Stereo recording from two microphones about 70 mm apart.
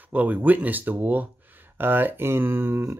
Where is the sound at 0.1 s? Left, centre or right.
Right.